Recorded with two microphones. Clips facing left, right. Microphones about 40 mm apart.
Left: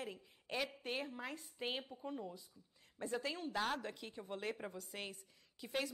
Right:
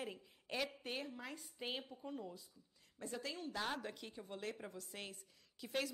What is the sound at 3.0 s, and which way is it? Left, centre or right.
Speech, left.